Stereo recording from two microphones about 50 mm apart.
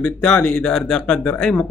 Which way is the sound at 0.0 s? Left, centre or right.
Left.